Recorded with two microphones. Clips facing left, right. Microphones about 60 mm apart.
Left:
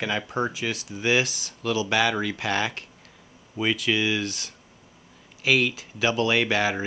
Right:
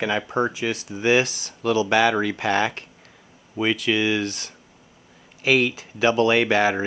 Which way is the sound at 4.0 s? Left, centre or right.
Centre.